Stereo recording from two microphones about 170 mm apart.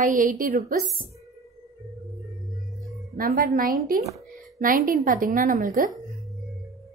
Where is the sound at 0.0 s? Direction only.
50° right (ahead or behind).